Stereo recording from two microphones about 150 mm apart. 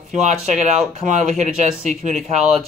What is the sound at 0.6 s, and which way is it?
Speech, 50° right (ahead or behind).